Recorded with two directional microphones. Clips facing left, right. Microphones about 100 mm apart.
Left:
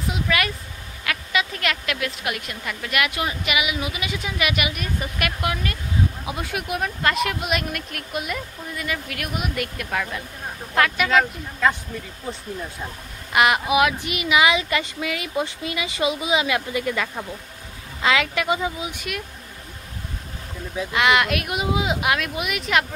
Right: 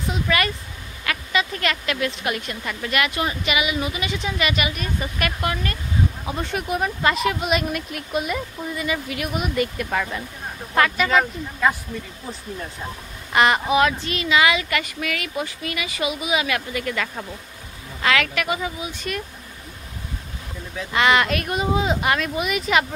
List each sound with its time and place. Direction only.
0.0 s speech: centre (ahead or behind)
13.3 s a woman's voice: 5° left (ahead or behind); by 18.9 s 20° left (ahead or behind)
18.9 s speech: 5° left (ahead or behind)
20.9 s speech: centre (ahead or behind)